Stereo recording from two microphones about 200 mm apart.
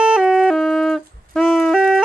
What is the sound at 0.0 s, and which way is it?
Music, 5° right (ahead or behind).